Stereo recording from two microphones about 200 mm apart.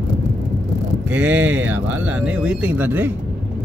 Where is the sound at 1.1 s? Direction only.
5° right (ahead or behind).